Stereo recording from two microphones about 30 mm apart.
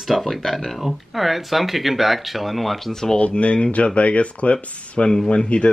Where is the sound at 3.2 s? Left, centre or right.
Left.